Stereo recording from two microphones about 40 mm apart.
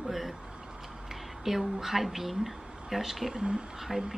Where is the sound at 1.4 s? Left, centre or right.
Centre.